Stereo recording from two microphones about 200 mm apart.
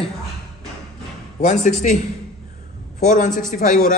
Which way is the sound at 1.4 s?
35° left (ahead or behind).